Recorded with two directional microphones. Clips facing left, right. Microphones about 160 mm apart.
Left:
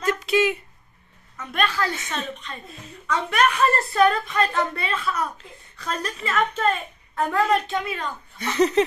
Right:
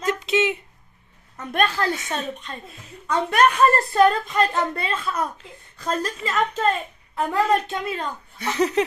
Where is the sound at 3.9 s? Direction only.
30° right (ahead or behind).